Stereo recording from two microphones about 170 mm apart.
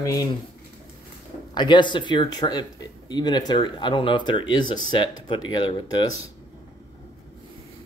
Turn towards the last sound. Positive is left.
turn(degrees=25)  # may be behind; listen again after turning